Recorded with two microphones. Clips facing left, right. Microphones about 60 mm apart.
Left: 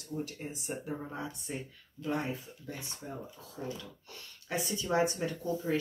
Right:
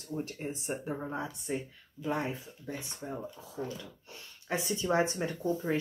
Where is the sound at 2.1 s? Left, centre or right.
Right.